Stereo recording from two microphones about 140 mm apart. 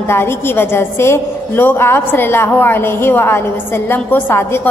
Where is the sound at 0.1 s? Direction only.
15° left (ahead or behind).